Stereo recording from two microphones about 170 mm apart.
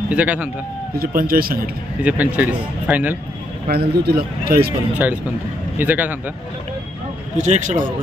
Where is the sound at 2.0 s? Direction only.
10° right (ahead or behind).